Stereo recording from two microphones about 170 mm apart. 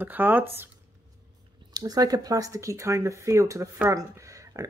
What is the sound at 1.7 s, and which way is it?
Speech, 20° right (ahead or behind).